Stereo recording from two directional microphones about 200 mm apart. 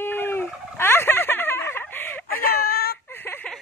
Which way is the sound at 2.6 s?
50° left (ahead or behind).